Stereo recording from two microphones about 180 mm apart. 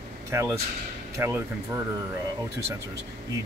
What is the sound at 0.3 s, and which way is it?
Speech, 15° right (ahead or behind).